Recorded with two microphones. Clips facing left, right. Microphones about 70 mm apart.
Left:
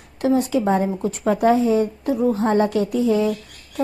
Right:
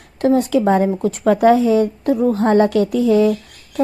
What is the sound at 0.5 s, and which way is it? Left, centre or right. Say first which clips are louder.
Speech: right 4 dB; right.